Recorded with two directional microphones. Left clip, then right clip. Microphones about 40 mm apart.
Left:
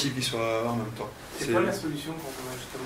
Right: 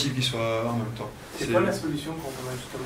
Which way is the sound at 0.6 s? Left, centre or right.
Centre.